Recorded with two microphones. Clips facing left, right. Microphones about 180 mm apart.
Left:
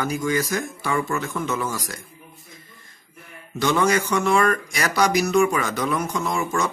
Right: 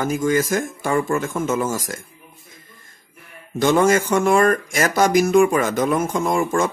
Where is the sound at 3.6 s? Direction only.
45° right (ahead or behind).